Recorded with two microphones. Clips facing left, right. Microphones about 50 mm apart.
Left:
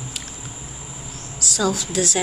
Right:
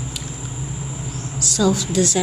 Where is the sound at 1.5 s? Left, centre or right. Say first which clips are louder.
Right 4 dB; centre.